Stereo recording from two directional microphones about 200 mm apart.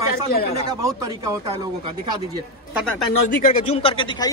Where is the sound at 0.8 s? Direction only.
15° right (ahead or behind).